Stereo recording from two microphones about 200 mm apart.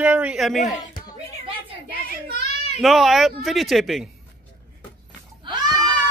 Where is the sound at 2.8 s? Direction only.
Centre (ahead or behind).